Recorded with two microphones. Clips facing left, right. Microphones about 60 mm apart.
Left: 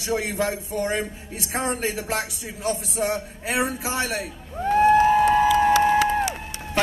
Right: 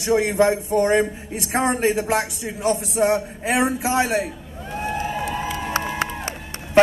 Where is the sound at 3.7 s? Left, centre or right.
Right.